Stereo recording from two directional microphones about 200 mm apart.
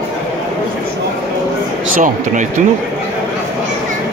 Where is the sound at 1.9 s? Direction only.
40° right (ahead or behind).